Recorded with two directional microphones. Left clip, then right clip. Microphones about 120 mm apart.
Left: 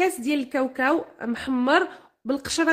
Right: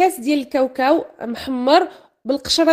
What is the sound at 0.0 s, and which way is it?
A woman's voice, 30° right (ahead or behind).